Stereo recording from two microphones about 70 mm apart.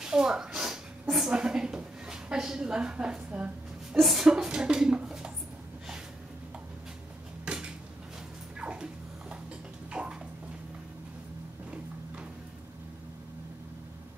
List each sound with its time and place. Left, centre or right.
0.0 s a woman's voice: centre
3.9 s a woman's voice: centre
7.4 s dishes: centre
8.5 s a sound: centre
9.8 s bathtub: centre